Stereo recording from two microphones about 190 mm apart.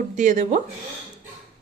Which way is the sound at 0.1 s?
40° right (ahead or behind).